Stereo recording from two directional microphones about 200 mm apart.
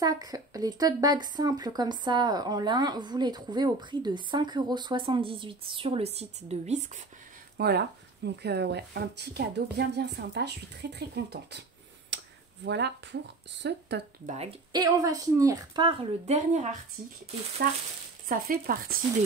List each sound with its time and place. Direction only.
0.0 s speech: 20° right (ahead or behind); by 6.9 s 35° right (ahead or behind)
7.5 s speech: 55° right (ahead or behind)
12.1 s a sound: 65° right (ahead or behind)
12.6 s speech: 60° right (ahead or behind)
14.2 s speech: 35° right (ahead or behind)
14.7 s speech: 20° right (ahead or behind); by 16.7 s 35° right (ahead or behind)
18.3 s speech: 45° right (ahead or behind)